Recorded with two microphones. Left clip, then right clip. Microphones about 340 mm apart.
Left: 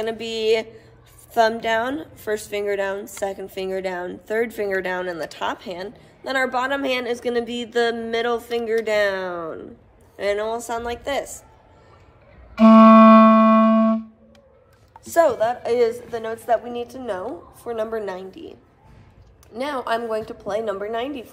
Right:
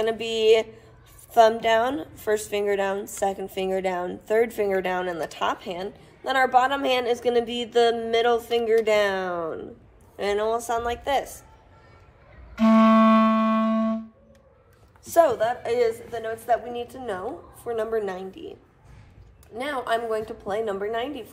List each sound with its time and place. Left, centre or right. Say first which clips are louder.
0.0 s a woman's voice: right 1 dB; centre
12.6 s music: left 8 dB; centre
15.0 s a woman's voice: left 2 dB; centre